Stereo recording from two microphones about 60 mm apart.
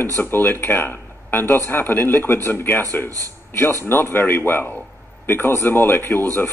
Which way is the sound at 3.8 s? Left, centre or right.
Left.